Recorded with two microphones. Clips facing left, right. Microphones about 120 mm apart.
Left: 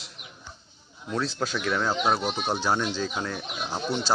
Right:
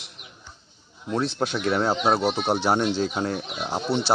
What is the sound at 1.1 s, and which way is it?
Speech, 25° right (ahead or behind).